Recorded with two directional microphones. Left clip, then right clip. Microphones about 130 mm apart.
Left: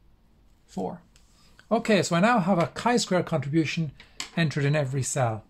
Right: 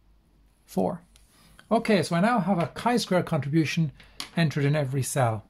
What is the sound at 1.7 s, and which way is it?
Speech, 15° right (ahead or behind).